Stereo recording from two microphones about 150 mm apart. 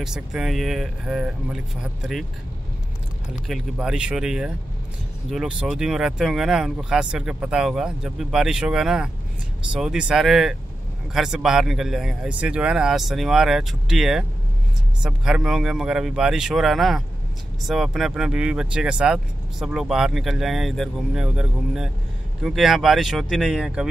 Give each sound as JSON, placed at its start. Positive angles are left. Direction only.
{"t": 0.0, "sound": "speech", "side_deg": -5}
{"t": 3.4, "sound": "speech", "side_deg": 0}